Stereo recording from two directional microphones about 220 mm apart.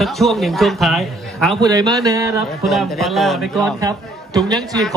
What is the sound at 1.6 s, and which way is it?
Speech, 15° right (ahead or behind).